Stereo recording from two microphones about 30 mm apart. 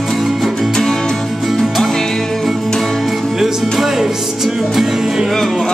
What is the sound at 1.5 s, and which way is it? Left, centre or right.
Music, centre.